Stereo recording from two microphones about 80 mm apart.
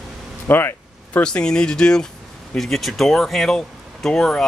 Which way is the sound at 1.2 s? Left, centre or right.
Centre.